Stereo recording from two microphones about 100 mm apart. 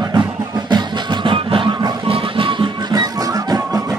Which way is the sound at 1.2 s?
55° right (ahead or behind).